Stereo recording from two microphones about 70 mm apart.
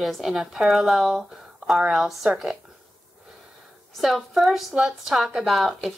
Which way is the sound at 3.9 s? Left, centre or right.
Centre.